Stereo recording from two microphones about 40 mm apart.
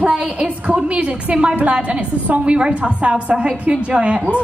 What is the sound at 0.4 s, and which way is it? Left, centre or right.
A woman's voice, right.